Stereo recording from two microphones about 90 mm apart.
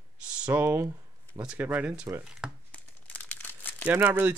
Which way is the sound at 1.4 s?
15° right (ahead or behind).